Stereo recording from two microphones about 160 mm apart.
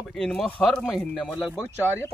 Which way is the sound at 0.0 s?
5° left (ahead or behind).